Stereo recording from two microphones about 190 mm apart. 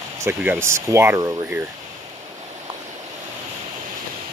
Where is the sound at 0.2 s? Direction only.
10° right (ahead or behind).